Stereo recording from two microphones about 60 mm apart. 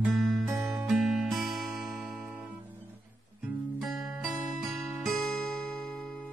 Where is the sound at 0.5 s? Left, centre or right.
Right.